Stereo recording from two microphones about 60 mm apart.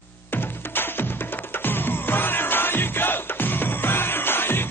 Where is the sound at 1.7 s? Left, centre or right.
Left.